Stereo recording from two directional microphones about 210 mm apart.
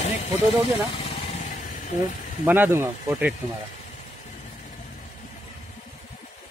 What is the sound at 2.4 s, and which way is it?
Speech, 10° right (ahead or behind).